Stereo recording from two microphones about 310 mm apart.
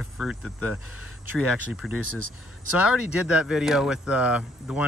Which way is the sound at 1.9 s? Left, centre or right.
Left.